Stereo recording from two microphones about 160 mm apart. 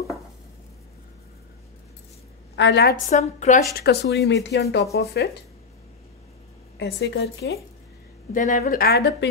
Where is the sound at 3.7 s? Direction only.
90° left.